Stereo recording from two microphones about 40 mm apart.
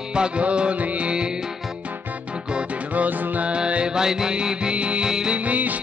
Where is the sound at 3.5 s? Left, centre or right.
Right.